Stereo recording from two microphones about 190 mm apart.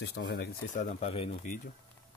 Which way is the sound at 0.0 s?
65° left (ahead or behind).